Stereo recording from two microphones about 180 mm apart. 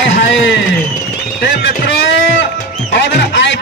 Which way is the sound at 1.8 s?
90° left.